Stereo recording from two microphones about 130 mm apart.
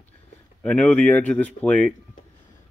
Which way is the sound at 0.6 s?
10° left (ahead or behind).